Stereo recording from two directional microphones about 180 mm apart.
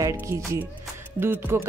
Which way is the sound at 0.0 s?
15° right (ahead or behind).